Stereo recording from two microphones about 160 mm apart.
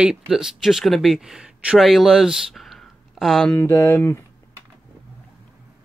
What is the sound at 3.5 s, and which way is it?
Speech, 15° left (ahead or behind).